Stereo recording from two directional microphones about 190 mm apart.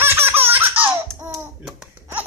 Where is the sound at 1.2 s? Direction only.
5° right (ahead or behind).